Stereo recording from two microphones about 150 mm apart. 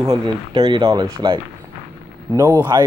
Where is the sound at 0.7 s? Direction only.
35° right (ahead or behind).